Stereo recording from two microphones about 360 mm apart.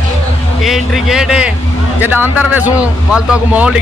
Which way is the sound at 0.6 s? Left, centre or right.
Centre.